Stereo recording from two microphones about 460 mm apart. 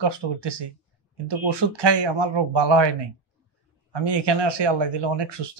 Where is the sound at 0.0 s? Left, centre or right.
Right.